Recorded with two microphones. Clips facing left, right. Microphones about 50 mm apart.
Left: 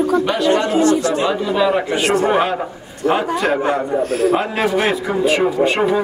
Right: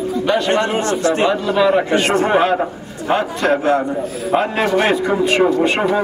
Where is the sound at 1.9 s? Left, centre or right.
Right.